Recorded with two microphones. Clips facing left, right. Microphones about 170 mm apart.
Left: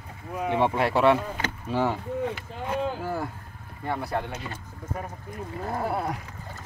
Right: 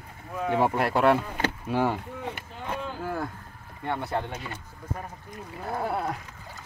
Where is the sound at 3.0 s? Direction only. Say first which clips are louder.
Left 1 dB; 5° left (ahead or behind).